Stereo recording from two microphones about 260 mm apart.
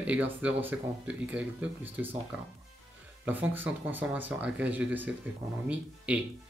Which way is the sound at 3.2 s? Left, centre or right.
Centre.